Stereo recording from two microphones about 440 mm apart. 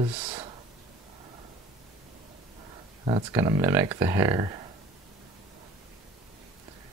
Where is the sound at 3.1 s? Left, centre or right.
Centre.